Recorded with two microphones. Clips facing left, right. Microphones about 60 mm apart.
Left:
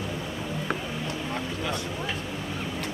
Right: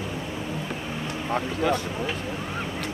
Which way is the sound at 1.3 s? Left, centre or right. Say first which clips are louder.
Right 10 dB; right.